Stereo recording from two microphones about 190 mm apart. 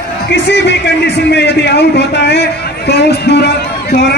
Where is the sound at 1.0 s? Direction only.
60° left (ahead or behind).